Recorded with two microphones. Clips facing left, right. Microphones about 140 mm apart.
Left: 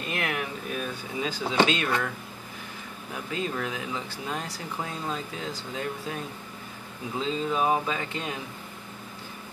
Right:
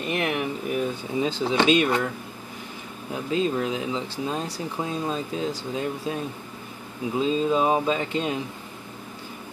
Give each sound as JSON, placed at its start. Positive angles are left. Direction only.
{"t": 0.1, "sound": "speech", "side_deg": -20}
{"t": 3.1, "sound": "speech", "side_deg": -25}